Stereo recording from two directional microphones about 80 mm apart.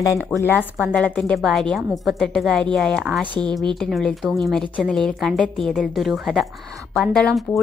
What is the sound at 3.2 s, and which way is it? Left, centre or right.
Speech, centre.